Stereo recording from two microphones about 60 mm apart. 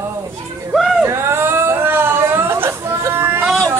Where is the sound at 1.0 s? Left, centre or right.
Right.